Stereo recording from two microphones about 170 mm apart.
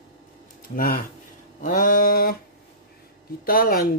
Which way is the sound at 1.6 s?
50° left (ahead or behind).